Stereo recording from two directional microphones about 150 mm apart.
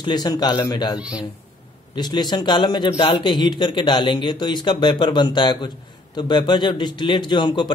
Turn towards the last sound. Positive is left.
turn(degrees=30)  # may be behind; listen again after turning